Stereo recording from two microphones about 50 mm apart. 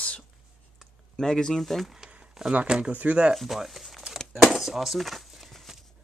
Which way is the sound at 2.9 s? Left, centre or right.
Right.